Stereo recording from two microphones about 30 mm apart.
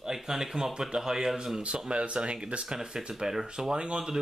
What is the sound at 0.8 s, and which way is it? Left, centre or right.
Speech, right.